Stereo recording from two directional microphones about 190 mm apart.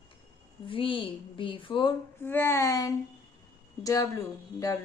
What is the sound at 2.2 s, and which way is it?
A woman's voice, 10° left (ahead or behind).